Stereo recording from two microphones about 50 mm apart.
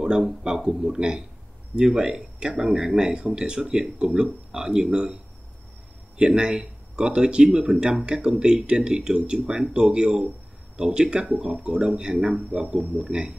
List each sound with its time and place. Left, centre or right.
0.0 s speech: centre